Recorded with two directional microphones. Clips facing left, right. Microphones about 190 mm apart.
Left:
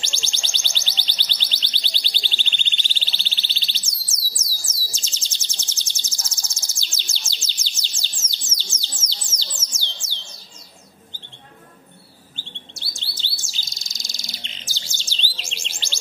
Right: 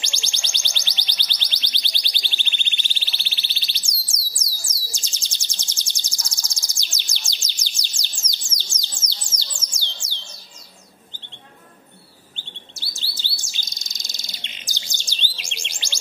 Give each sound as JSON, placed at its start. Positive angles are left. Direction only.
{"t": 0.0, "sound": "music", "side_deg": -15}
{"t": 7.2, "sound": "bird", "side_deg": -15}
{"t": 9.3, "sound": "a sound", "side_deg": 25}
{"t": 10.0, "sound": "a sound", "side_deg": -15}
{"t": 12.7, "sound": "chirp", "side_deg": -5}
{"t": 14.0, "sound": "bird", "side_deg": -20}